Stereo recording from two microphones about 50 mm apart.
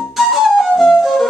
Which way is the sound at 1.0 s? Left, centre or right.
Centre.